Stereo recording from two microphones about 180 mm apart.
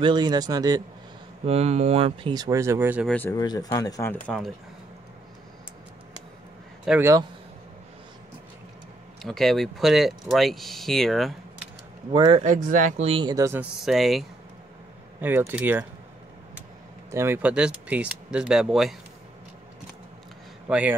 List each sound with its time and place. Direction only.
0.0 s speech: 25° right (ahead or behind)
1.4 s speech: 35° right (ahead or behind); by 3.1 s 10° right (ahead or behind)
3.1 s speech: 10° left (ahead or behind)
3.3 s speech: 20° left (ahead or behind)
6.9 s speech: 15° right (ahead or behind)
9.2 s speech: centre (ahead or behind)
12.1 s speech: 25° right (ahead or behind)
12.4 s speech: 45° right (ahead or behind); by 13.7 s 15° right (ahead or behind)
13.7 s speech: centre (ahead or behind)
15.1 s speech: 10° right (ahead or behind)
17.1 s speech: 15° right (ahead or behind)
20.6 s speech: 10° right (ahead or behind)